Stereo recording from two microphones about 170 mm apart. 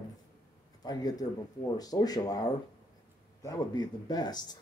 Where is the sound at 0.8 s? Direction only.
20° left (ahead or behind).